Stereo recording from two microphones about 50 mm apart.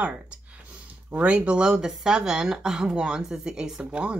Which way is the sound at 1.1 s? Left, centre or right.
Right.